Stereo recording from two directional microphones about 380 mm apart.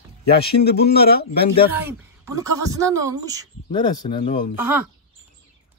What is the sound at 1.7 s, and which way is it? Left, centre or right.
A woman's voice, centre.